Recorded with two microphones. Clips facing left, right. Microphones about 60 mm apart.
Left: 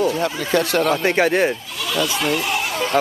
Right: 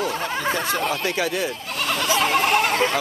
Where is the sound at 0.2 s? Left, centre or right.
Left.